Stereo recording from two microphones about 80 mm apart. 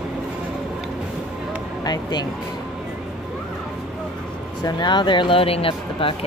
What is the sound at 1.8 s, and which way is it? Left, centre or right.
Speech, left.